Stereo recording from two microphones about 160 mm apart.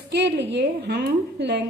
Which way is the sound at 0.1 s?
90° right.